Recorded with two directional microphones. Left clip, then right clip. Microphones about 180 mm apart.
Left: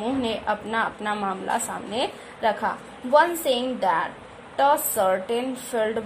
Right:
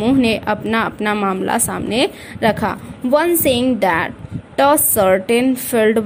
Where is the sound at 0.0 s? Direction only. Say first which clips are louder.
Right 10 dB; 30° right (ahead or behind).